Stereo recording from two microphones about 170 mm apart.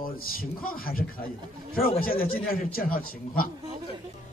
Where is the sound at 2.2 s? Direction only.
60° left (ahead or behind).